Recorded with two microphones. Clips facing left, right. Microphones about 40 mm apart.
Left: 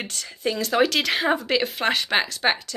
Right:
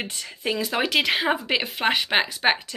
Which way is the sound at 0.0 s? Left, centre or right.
Right.